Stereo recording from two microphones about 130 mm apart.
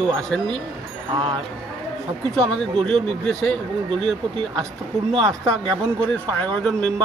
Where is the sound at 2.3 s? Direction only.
5° left (ahead or behind).